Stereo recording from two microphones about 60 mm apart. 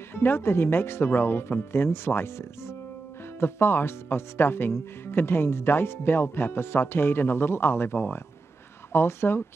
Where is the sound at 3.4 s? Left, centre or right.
Left.